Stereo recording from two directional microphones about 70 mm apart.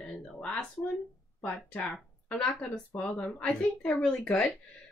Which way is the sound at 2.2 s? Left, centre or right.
Centre.